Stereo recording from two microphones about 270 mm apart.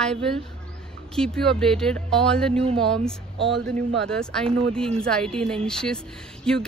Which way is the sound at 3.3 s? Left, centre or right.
Right.